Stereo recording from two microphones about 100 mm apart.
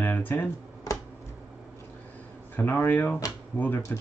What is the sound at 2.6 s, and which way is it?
Speech, 20° left (ahead or behind).